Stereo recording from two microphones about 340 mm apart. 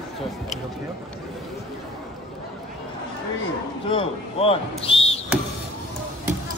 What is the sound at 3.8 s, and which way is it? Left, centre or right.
Speech, centre.